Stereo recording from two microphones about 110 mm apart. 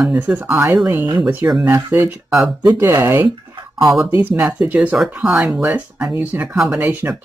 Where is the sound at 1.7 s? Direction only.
25° right (ahead or behind).